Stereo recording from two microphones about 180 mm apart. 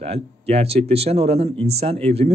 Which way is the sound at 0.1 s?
35° right (ahead or behind).